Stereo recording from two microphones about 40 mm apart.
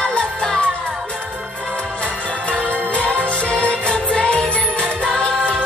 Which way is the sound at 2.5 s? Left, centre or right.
Left.